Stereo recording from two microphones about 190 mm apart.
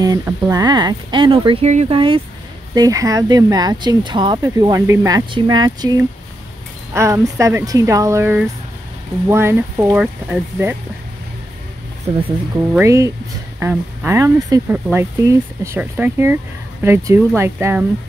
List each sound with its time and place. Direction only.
0.0 s speech: 20° right (ahead or behind)
12.7 s speech: 15° right (ahead or behind)